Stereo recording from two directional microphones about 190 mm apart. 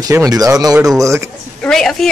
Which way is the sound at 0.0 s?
15° right (ahead or behind).